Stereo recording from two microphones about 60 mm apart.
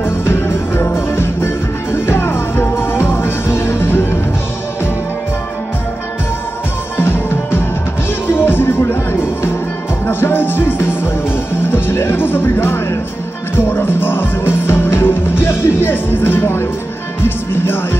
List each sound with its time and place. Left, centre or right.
0.0 s music: left
7.0 s music: left